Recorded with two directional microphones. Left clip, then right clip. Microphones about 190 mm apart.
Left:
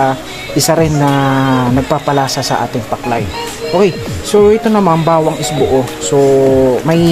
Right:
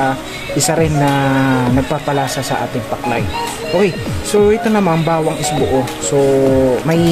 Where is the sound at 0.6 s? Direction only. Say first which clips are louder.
Left 3 dB; 30° left (ahead or behind).